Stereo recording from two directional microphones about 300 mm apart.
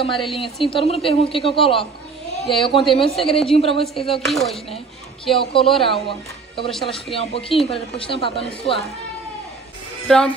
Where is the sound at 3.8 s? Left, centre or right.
Centre.